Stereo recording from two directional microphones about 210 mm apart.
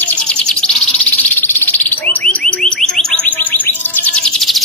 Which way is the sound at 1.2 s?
10° left (ahead or behind).